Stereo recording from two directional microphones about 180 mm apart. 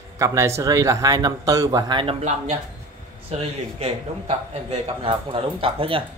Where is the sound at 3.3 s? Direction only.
35° right (ahead or behind).